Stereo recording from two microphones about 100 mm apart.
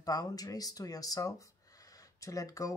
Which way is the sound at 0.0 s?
40° left (ahead or behind).